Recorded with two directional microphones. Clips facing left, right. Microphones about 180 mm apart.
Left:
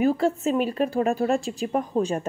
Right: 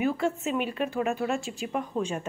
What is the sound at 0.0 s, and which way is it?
Speech, 35° left (ahead or behind).